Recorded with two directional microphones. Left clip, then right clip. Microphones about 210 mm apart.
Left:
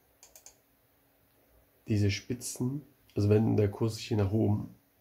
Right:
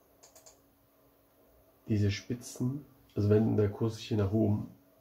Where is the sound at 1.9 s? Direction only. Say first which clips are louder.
Left 2 dB; 10° left (ahead or behind).